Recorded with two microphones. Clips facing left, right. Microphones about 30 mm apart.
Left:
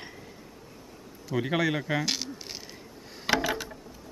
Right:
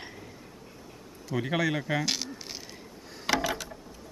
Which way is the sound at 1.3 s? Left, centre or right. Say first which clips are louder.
Left 1 dB; centre.